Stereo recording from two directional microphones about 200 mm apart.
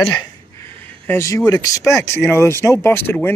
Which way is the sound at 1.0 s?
15° left (ahead or behind).